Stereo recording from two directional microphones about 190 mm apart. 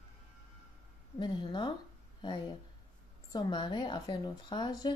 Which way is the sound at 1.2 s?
25° left (ahead or behind).